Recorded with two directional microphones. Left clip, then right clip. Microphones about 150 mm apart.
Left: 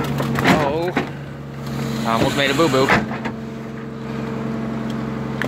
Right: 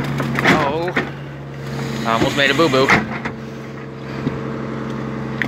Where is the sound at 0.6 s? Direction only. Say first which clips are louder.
Right 1 dB; 35° left (ahead or behind).